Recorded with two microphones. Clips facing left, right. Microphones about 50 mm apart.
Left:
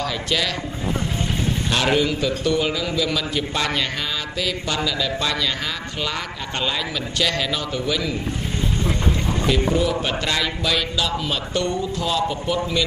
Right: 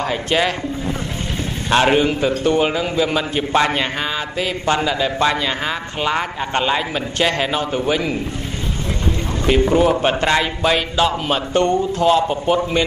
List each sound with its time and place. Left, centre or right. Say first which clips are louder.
0.0 s speech: right 5 dB; right
1.7 s speech: right 6 dB; right
9.5 s speech: right 7 dB; right